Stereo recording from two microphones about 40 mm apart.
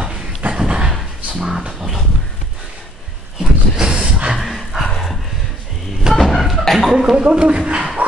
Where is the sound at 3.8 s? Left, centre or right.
Centre.